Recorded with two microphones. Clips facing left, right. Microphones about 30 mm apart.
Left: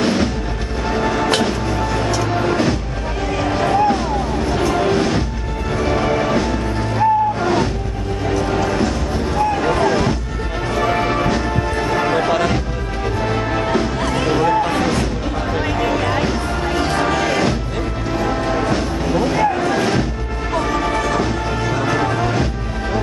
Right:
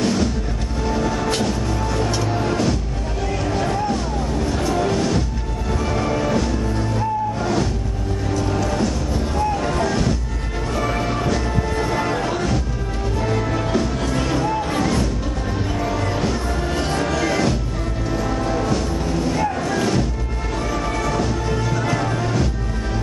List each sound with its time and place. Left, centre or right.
0.0 s music: left
9.6 s boat: left
10.8 s music: left
15.8 s music: left
16.3 s music: left